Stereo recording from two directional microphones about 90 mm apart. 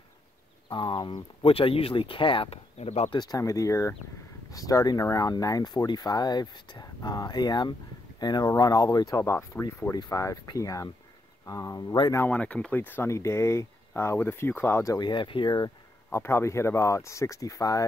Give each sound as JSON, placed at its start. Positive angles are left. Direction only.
{"t": 0.7, "sound": "speech", "side_deg": 65}
{"t": 1.4, "sound": "speech", "side_deg": 90}
{"t": 3.2, "sound": "speech", "side_deg": 40}
{"t": 9.2, "sound": "speech", "side_deg": 30}
{"t": 12.3, "sound": "speech", "side_deg": 15}
{"t": 13.1, "sound": "speech", "side_deg": 30}
{"t": 15.0, "sound": "speech", "side_deg": 60}
{"t": 16.1, "sound": "speech", "side_deg": 30}